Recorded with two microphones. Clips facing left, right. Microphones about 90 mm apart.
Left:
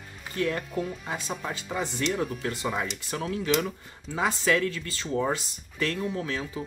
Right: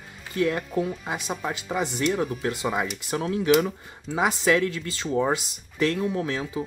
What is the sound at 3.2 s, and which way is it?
Speech, 25° right (ahead or behind).